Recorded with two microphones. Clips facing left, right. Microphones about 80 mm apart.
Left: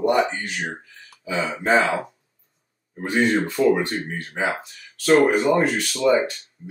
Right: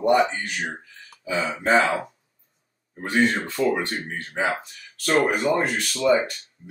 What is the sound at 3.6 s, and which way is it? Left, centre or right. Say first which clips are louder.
Speech: left 3 dB; centre.